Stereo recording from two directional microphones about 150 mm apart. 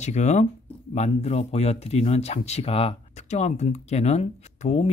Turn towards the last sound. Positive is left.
turn(degrees=45)  # may be behind; listen again after turning